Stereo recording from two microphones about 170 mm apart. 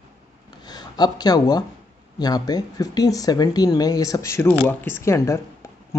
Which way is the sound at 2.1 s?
25° left (ahead or behind).